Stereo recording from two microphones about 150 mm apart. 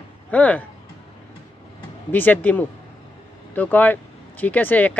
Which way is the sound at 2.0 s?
10° left (ahead or behind).